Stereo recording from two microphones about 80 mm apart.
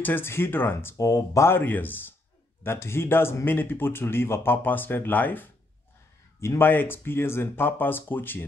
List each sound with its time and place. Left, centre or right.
0.0 s speech: left
1.6 s speech: left